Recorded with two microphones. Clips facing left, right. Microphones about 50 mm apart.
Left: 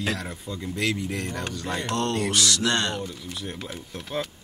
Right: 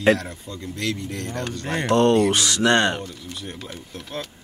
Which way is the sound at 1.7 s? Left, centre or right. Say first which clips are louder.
Right 8 dB; right.